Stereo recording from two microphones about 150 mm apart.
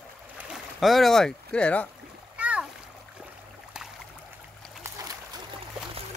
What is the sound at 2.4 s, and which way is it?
Splash, 10° right (ahead or behind).